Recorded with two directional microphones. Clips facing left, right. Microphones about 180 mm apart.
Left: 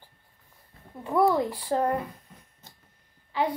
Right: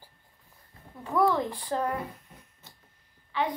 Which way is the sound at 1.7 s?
30° left (ahead or behind).